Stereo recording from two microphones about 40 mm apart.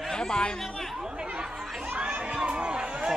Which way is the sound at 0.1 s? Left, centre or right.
Centre.